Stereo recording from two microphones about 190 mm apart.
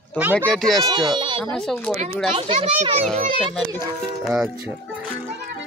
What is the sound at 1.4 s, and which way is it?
Speech, 5° left (ahead or behind).